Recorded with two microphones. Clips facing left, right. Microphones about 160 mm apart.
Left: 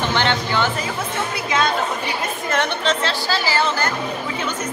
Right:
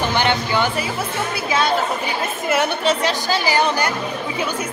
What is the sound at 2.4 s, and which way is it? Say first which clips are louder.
Speech: right 3 dB; 10° right (ahead or behind).